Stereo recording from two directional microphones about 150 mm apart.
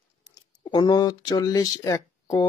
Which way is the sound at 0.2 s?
25° left (ahead or behind).